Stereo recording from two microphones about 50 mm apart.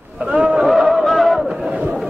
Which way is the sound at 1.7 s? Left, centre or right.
Right.